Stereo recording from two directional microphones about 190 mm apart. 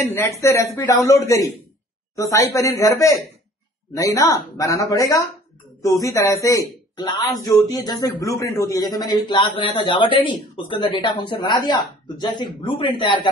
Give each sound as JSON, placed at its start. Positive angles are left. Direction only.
{"t": 0.0, "sound": "a man's voice", "side_deg": 15}